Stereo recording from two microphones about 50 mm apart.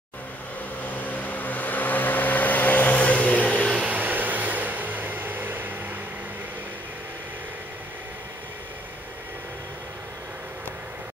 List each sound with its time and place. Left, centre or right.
0.8 s vehicle: left
3.9 s vehicle: right